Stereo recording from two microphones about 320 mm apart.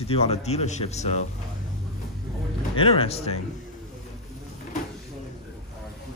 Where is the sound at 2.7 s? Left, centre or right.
Centre.